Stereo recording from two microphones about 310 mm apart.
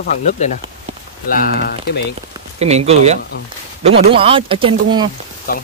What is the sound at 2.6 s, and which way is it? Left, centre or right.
Speech, right.